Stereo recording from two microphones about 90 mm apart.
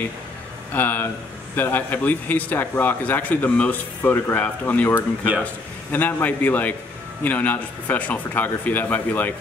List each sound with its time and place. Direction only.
0.7 s speech: 20° left (ahead or behind)